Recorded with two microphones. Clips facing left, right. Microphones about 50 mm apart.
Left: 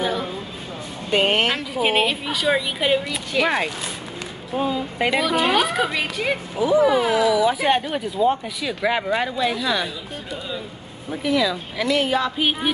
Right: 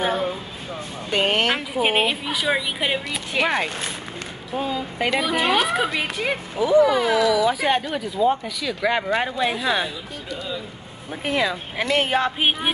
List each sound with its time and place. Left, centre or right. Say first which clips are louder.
1.1 s speech: left 2 dB; centre
1.5 s a woman's voice: even; centre
4.6 s speech: left 2 dB; centre
5.2 s speech: left 1 dB; centre
6.6 s speech: right 1 dB; centre
8.9 s speech: right 1 dB; centre
9.2 s speech: even; right
11.2 s speech: left 2 dB; right